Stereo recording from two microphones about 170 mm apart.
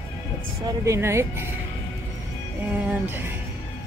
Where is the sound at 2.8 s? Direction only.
10° right (ahead or behind).